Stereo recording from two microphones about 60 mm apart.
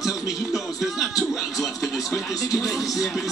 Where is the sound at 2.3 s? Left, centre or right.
Left.